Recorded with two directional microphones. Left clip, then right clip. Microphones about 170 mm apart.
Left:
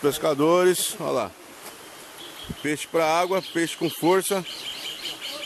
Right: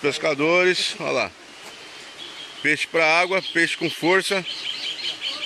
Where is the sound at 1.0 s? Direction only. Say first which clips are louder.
Even; 20° left (ahead or behind).